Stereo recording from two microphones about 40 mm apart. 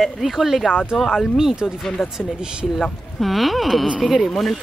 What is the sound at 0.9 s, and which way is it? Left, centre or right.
Speech, centre.